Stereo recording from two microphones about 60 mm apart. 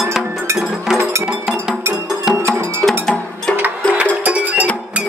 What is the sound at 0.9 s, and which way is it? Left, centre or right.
Music, right.